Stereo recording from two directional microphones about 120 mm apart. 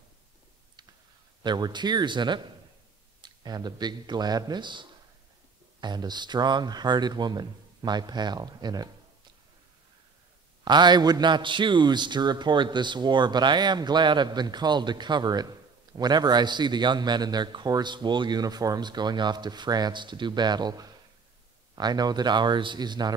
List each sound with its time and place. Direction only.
1.4 s a man's voice: 40° right (ahead or behind)
10.6 s a man's voice: 35° right (ahead or behind)